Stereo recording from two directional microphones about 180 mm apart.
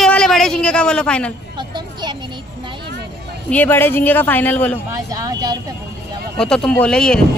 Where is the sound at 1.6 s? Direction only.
25° right (ahead or behind).